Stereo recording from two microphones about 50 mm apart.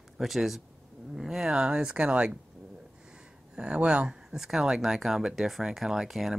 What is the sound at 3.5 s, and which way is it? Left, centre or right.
Speech, centre.